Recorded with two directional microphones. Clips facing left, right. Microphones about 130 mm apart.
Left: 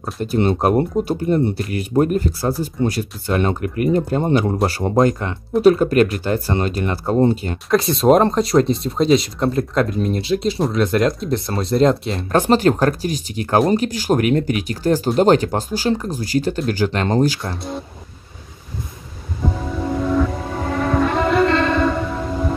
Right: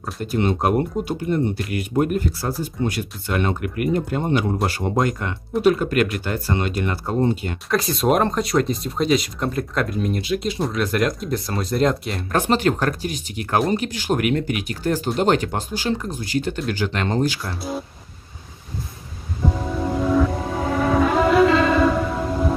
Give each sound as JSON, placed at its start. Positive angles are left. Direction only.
{"t": 0.0, "sound": "speech", "side_deg": 30}
{"t": 17.6, "sound": "speech", "side_deg": -5}
{"t": 19.8, "sound": "music", "side_deg": -5}